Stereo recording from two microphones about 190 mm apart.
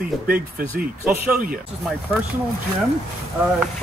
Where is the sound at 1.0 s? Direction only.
5° right (ahead or behind).